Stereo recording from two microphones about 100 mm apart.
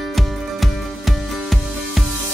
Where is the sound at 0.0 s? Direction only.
Centre (ahead or behind).